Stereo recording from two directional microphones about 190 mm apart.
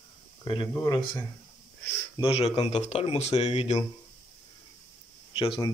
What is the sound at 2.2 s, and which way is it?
Speech, 30° left (ahead or behind).